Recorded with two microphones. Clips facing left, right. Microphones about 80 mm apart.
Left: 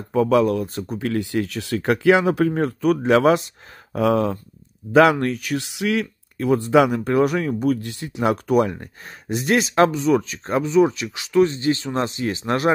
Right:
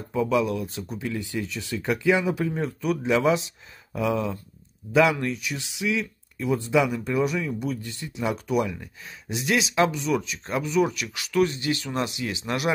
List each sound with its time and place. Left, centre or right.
0.1 s speech: left